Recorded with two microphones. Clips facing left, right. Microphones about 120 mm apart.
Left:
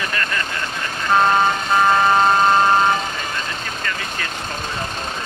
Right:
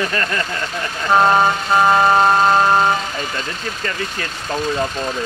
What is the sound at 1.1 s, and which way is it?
Vehicle, 20° right (ahead or behind).